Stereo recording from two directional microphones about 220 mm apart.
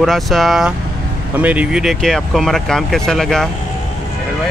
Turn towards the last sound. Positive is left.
turn(degrees=0)  # may be behind; listen again after turning